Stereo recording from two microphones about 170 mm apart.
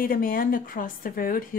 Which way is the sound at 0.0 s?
55° left (ahead or behind).